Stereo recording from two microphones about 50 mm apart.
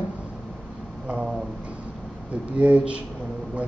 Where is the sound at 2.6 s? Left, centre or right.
Right.